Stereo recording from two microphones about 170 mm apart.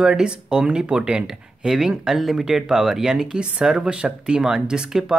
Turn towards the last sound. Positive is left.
turn(degrees=-5)  # may be behind; listen again after turning